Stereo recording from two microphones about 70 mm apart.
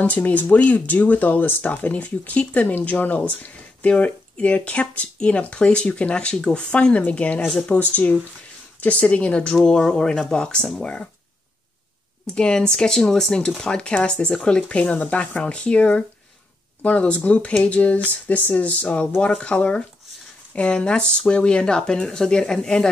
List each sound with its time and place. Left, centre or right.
0.0 s speech: left
12.3 s speech: centre